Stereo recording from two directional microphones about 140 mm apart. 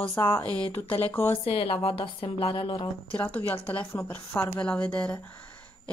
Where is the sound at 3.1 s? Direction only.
10° left (ahead or behind).